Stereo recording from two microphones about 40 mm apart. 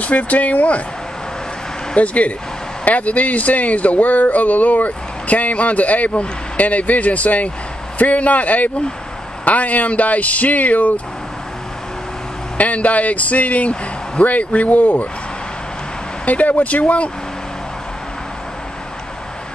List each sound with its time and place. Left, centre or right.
0.0 s speech: left
2.0 s speech: left
12.5 s speech: left
16.3 s speech: left